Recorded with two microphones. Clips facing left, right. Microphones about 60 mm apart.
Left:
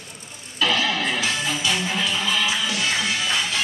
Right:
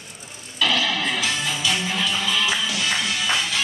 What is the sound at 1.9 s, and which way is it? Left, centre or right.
Music, left.